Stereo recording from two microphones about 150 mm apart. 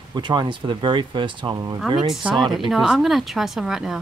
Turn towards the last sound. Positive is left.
turn(degrees=-5)  # may be behind; listen again after turning